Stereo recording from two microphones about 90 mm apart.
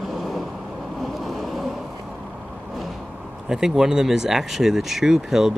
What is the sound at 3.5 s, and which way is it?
Speech, 5° right (ahead or behind).